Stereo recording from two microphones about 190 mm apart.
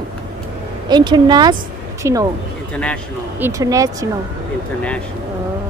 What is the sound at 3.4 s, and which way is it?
Speech, 15° right (ahead or behind).